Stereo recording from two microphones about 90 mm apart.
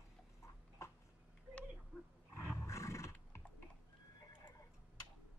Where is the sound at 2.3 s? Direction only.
30° left (ahead or behind).